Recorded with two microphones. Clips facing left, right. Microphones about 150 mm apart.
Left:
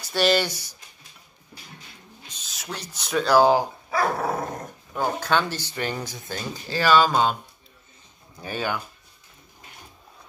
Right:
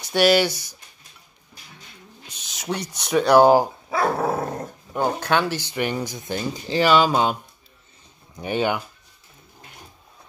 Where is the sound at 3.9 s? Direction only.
25° right (ahead or behind).